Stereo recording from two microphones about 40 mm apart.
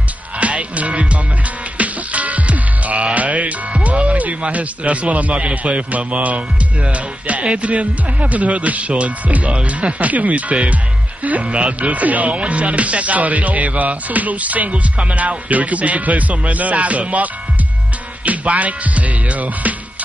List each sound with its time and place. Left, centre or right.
0.4 s music: right
3.2 s speech: right